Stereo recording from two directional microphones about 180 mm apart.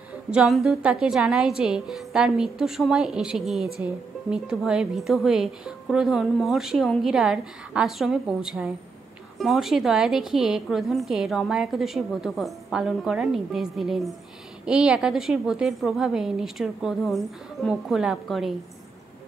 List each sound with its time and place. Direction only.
0.3 s a woman's voice: 5° right (ahead or behind)